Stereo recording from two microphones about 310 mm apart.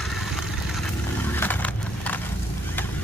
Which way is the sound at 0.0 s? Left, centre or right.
Centre.